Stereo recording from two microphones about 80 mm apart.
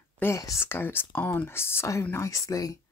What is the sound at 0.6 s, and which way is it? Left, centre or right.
Speech, left.